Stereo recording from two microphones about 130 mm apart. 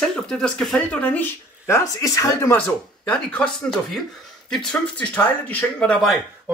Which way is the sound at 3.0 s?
5° left (ahead or behind).